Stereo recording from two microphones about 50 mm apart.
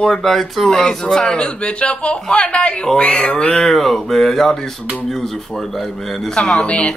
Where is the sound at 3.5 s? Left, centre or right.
Centre.